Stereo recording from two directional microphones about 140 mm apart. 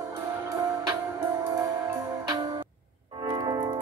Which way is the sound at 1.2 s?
20° right (ahead or behind).